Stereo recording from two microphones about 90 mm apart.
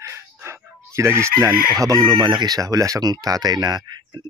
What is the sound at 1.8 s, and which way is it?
Speech, 45° right (ahead or behind).